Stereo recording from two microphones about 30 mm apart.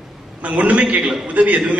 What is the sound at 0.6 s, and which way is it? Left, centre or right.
A man's voice, right.